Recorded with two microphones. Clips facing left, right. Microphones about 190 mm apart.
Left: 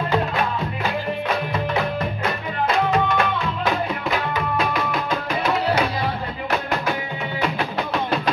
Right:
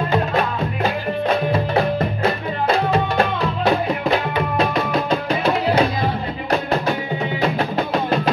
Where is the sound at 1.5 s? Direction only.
35° right (ahead or behind).